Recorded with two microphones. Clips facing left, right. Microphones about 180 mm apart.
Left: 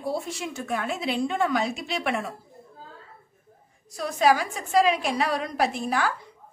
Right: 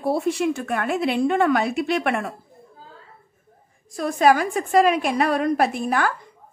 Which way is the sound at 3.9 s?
50° right (ahead or behind).